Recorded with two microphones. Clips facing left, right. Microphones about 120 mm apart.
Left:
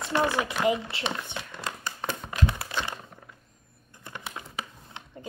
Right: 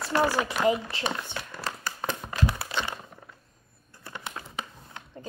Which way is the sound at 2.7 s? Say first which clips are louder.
Right 1 dB; 20° left (ahead or behind).